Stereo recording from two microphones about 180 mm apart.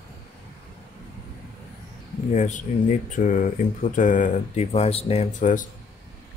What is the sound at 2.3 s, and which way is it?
Speech, 45° left (ahead or behind).